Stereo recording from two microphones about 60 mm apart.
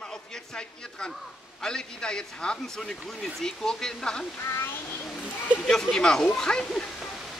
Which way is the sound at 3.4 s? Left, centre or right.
Centre.